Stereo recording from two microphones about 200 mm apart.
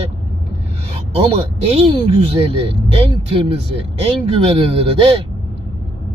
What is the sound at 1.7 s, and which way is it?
Speech, 30° right (ahead or behind).